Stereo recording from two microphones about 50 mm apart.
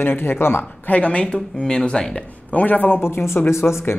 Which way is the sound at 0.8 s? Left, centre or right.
Left.